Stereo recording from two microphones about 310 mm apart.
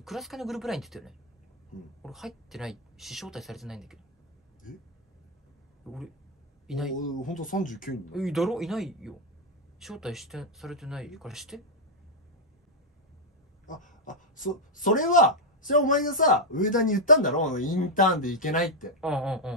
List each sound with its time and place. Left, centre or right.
0.0 s speech: centre
5.9 s speech: centre
7.2 s speech: left
8.1 s speech: centre
13.7 s speech: left
18.9 s speech: centre